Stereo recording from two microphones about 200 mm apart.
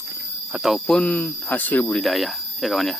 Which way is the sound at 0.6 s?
Centre (ahead or behind).